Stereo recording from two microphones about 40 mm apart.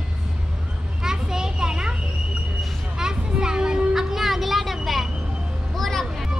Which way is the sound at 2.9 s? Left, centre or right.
Centre.